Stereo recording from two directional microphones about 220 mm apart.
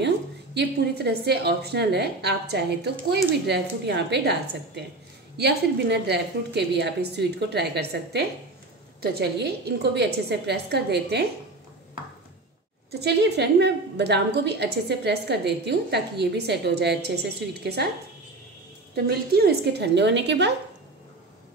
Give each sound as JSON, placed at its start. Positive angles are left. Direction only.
{"t": 0.6, "sound": "a woman's voice", "side_deg": -50}
{"t": 13.0, "sound": "a woman's voice", "side_deg": -50}
{"t": 18.9, "sound": "a woman's voice", "side_deg": -45}